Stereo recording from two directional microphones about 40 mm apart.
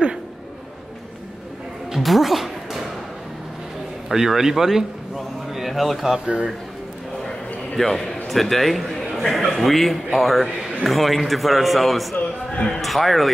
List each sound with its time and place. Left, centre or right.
2.0 s music: centre
4.1 s a man's voice: centre
5.1 s a sound: centre
7.2 s a sound: centre
8.3 s a man's voice: centre
9.4 s a man's voice: centre
9.7 s a man's voice: centre